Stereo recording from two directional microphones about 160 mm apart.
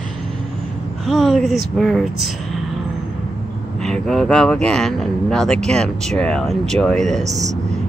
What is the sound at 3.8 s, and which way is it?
Speech, 5° left (ahead or behind).